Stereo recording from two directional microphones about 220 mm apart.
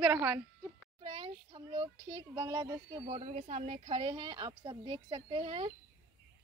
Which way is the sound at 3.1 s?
30° right (ahead or behind).